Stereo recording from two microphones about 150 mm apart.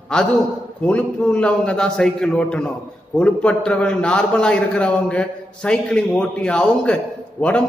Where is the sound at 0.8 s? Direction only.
10° left (ahead or behind).